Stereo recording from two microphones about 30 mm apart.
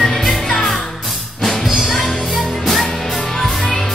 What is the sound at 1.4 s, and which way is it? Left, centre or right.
Music, centre.